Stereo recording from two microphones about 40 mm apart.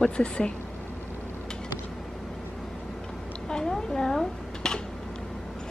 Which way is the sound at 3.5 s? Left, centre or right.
Centre.